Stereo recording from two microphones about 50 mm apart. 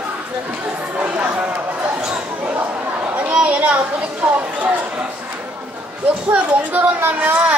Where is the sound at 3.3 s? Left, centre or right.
Right.